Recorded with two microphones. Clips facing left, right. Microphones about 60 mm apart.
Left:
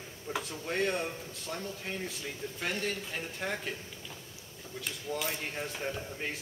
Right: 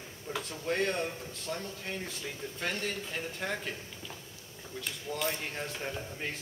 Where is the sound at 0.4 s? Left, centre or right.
Centre.